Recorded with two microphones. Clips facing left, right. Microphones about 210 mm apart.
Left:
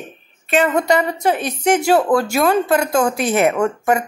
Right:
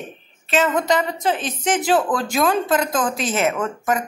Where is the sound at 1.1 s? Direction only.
10° left (ahead or behind).